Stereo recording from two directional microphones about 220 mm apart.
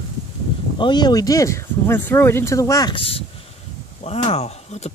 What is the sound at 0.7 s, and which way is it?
Speech, 20° left (ahead or behind).